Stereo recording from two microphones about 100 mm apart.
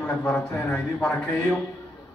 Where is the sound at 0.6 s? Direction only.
25° left (ahead or behind).